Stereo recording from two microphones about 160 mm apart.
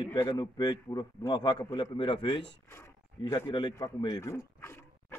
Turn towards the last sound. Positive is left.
turn(degrees=15)  # may be behind; listen again after turning